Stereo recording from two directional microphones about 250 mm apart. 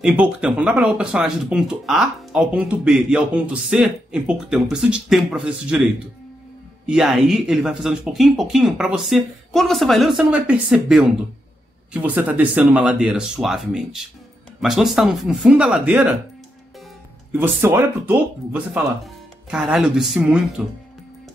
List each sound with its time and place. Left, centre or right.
0.0 s speech: centre
6.9 s speech: centre
17.3 s speech: centre